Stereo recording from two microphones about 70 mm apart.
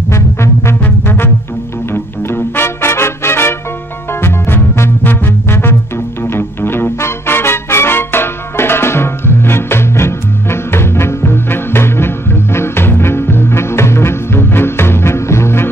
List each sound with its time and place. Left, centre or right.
0.1 s music: left
1.9 s music: left